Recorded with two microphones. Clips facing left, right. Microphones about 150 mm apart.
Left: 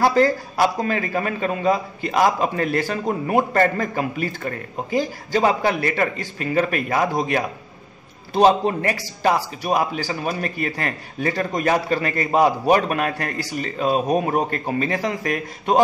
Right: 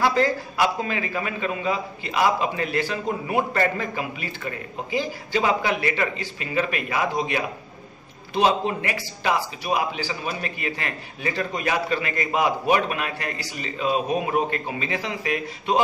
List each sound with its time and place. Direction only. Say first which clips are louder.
0.0 s a man's voice: left 4 dB; 40° left (ahead or behind)